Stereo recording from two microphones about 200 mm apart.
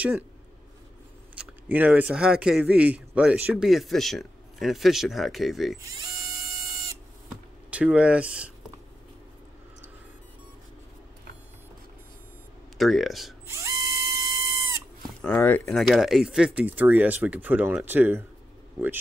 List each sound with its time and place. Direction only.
1.7 s speech: 10° right (ahead or behind)
5.8 s mechanisms: 20° right (ahead or behind)
7.7 s speech: 5° right (ahead or behind)
12.7 s speech: centre (ahead or behind)
13.5 s drill: 15° right (ahead or behind)
15.2 s speech: 10° left (ahead or behind); by 18.2 s 10° right (ahead or behind)